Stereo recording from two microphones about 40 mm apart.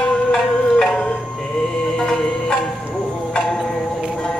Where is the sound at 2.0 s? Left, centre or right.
Centre.